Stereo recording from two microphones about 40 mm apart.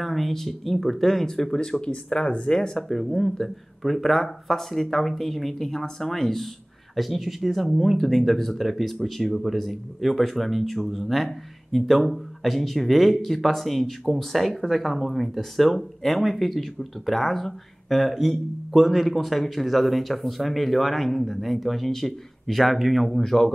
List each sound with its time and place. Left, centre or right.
0.0 s speech: centre
2.9 s speech: centre